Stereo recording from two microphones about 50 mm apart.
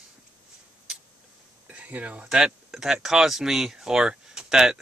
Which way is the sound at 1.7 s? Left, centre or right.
Right.